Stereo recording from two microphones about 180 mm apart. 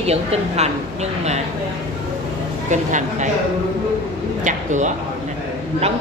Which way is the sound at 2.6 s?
40° right (ahead or behind).